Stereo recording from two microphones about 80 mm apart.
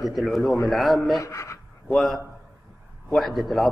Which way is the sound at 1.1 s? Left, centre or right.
Left.